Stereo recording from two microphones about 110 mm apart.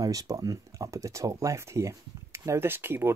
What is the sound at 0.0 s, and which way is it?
Speech, 35° right (ahead or behind).